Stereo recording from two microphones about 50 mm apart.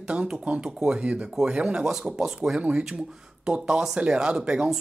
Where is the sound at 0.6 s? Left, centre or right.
Centre.